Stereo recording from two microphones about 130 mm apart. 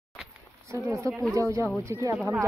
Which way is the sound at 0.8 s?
20° right (ahead or behind).